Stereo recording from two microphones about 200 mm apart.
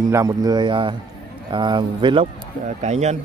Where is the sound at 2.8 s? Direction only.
35° right (ahead or behind).